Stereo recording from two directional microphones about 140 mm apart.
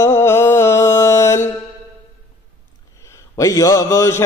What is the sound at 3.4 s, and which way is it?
Mantra, 25° left (ahead or behind).